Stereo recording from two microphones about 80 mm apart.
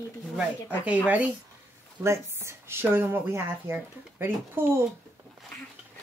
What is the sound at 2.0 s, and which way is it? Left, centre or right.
Speech, right.